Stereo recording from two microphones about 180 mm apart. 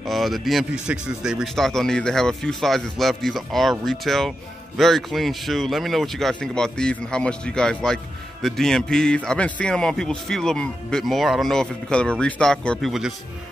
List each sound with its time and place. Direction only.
0.0 s speech: centre (ahead or behind)